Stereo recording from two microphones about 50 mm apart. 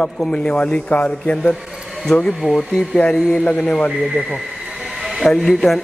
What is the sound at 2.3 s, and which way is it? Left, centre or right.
Speech, centre.